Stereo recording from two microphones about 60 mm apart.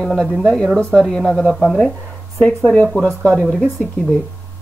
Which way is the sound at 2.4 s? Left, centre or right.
Centre.